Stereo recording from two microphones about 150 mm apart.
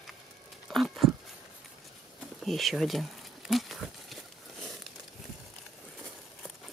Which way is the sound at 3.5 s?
Centre (ahead or behind).